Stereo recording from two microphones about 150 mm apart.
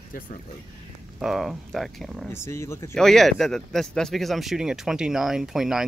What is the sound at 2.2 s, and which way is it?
Speech, 15° left (ahead or behind).